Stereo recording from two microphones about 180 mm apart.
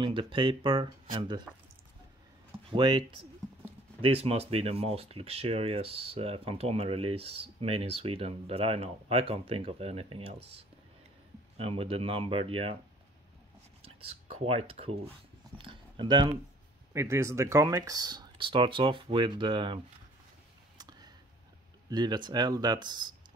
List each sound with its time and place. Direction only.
0.0 s speech: 30° right (ahead or behind)
2.7 s speech: 25° right (ahead or behind)
11.5 s speech: 35° right (ahead or behind)
13.8 s speech: 35° right (ahead or behind)
15.5 s a sound: 25° right (ahead or behind)
16.9 s speech: 15° right (ahead or behind)
20.7 s a sound: 20° right (ahead or behind)
21.8 s speech: 25° right (ahead or behind)